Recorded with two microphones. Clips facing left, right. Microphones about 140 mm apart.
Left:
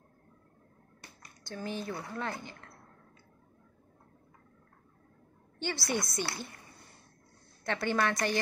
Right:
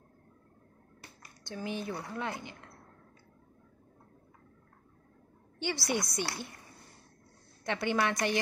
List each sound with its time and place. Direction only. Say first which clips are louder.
1.5 s a woman's voice: even; 15° right (ahead or behind)
5.6 s a woman's voice: right 1 dB; 15° right (ahead or behind)
7.6 s a woman's voice: even; 15° right (ahead or behind)